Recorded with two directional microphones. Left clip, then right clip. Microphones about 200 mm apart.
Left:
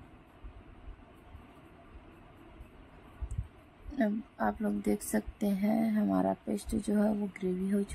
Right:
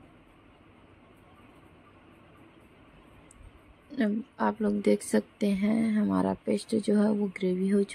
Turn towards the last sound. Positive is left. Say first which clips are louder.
# right 6 dB
turn(degrees=-10)  # may be behind; listen again after turning